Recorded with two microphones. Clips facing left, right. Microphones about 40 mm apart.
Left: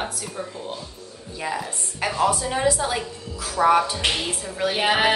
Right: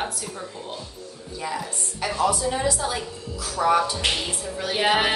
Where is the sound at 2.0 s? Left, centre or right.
Left.